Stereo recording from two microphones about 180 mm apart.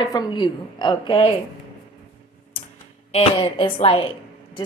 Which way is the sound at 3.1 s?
30° left (ahead or behind).